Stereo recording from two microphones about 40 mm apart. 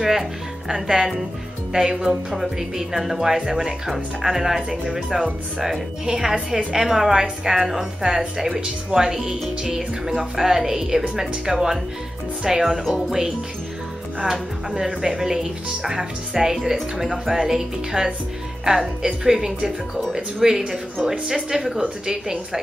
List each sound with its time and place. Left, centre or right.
0.7 s speech: centre
2.3 s speech: centre
14.2 s speech: centre
20.0 s speech: centre
21.0 s speech: centre